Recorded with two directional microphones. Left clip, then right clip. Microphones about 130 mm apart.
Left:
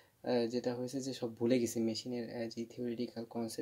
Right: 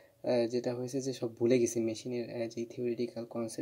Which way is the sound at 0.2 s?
10° left (ahead or behind).